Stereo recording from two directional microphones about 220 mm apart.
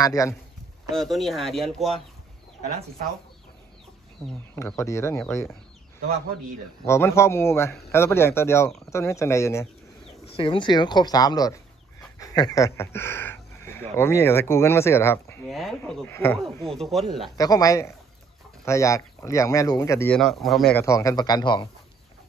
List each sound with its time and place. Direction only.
0.0 s speech: 15° left (ahead or behind)
0.9 s speech: centre (ahead or behind)
4.6 s speech: 15° left (ahead or behind)
6.9 s speech: 10° left (ahead or behind)
10.3 s speech: 25° left (ahead or behind)
12.0 s a sound: 15° left (ahead or behind)
13.9 s speech: 10° left (ahead or behind)
15.4 s speech: centre (ahead or behind)
17.4 s speech: 15° left (ahead or behind)
20.8 s speech: 15° left (ahead or behind)